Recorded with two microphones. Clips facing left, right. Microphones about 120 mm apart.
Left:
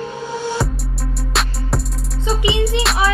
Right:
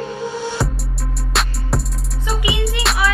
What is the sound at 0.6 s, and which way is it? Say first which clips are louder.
Music: left 1 dB; centre (ahead or behind).